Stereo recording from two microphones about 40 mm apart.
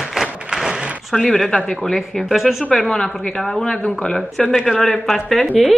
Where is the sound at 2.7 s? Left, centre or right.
Centre.